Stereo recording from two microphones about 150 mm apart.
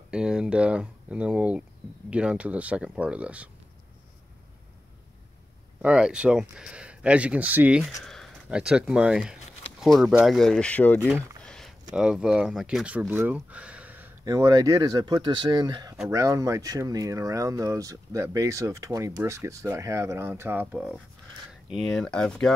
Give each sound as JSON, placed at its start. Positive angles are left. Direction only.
{"t": 0.1, "sound": "speech", "side_deg": -5}
{"t": 5.8, "sound": "speech", "side_deg": -5}
{"t": 8.0, "sound": "a sound", "side_deg": 5}
{"t": 8.5, "sound": "speech", "side_deg": -5}
{"t": 14.2, "sound": "speech", "side_deg": -25}
{"t": 21.6, "sound": "speech", "side_deg": 0}